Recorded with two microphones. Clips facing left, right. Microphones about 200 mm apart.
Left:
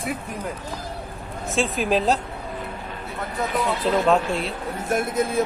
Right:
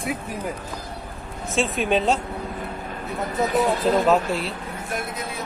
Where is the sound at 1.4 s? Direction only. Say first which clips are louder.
Even; centre (ahead or behind).